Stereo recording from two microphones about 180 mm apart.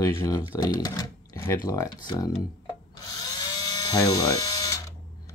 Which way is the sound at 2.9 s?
20° left (ahead or behind).